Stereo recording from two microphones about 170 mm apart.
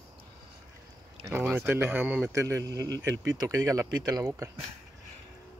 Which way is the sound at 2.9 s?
90° right.